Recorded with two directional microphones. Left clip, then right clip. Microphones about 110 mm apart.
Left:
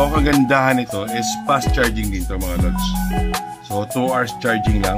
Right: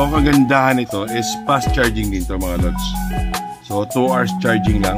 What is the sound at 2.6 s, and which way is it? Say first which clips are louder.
Speech: even; 50° right (ahead or behind).